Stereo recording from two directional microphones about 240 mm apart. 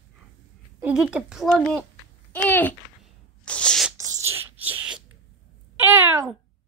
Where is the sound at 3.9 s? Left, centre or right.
Centre.